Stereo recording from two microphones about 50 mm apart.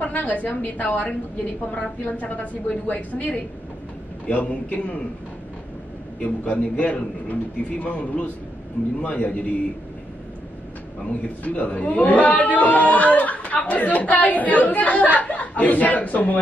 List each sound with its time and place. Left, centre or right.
0.0 s a man's voice: left
6.1 s a man's voice: left
11.4 s speech: left